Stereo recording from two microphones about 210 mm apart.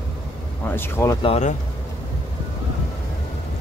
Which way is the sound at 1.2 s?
30° left (ahead or behind).